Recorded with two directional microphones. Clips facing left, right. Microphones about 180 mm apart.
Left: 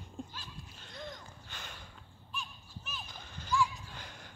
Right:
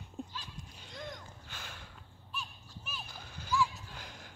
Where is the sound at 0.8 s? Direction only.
5° right (ahead or behind).